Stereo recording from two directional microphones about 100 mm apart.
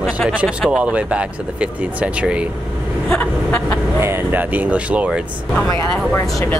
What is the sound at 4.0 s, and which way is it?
Speech, 20° right (ahead or behind).